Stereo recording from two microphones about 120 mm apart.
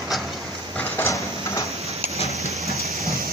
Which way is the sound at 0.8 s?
20° left (ahead or behind).